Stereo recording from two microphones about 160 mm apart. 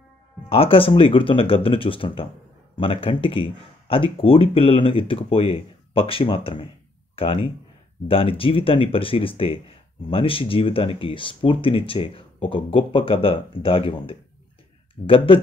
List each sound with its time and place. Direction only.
0.5 s speech: 35° left (ahead or behind)